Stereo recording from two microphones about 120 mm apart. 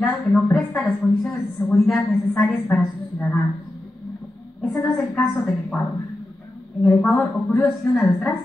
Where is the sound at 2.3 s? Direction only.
15° left (ahead or behind).